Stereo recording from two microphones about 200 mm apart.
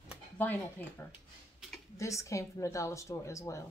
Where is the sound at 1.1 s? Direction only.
5° right (ahead or behind).